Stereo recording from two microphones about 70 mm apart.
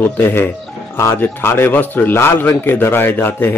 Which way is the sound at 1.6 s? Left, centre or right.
Left.